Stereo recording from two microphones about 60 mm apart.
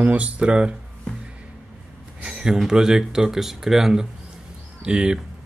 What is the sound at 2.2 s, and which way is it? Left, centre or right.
Speech, centre.